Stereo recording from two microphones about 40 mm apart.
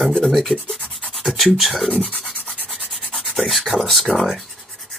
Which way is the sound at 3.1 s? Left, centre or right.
Centre.